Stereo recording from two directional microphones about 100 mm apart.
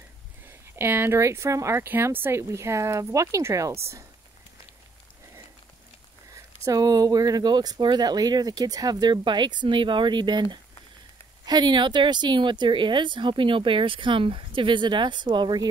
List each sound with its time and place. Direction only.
0.5 s speech: 20° right (ahead or behind)
6.3 s speech: 35° right (ahead or behind)